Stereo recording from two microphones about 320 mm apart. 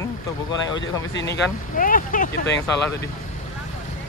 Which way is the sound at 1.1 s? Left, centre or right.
Left.